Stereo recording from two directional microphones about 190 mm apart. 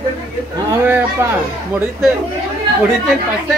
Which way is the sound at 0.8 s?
10° right (ahead or behind).